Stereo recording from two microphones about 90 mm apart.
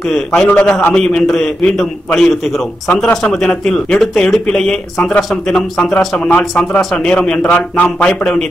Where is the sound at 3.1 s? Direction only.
10° left (ahead or behind).